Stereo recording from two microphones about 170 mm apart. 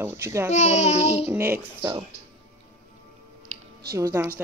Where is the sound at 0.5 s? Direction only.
40° left (ahead or behind).